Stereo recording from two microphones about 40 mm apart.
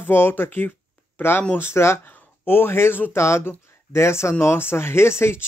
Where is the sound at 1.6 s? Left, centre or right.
Left.